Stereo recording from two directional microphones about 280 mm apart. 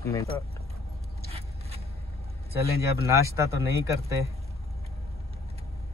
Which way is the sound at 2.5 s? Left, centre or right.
Right.